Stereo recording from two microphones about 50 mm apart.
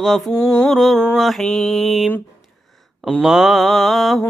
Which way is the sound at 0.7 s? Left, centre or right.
Centre.